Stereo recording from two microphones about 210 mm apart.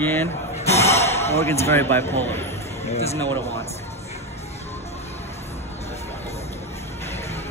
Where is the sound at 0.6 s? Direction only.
30° left (ahead or behind).